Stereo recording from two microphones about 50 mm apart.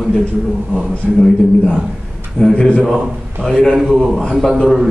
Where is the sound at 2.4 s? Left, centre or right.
Centre.